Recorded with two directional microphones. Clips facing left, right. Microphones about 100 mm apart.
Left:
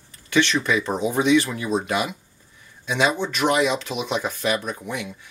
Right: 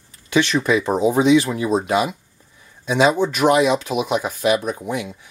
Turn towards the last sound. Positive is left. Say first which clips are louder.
# right 5 dB
turn(degrees=-15)  # may be behind; listen again after turning